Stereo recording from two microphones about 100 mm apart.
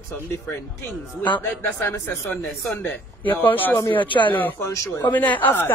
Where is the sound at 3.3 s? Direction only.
20° left (ahead or behind).